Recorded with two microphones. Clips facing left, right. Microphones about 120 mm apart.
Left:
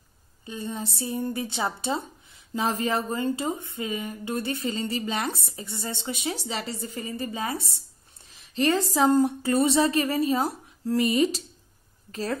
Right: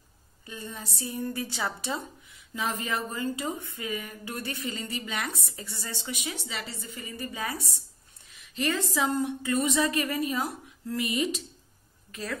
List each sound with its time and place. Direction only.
0.5 s a woman's voice: 25° left (ahead or behind)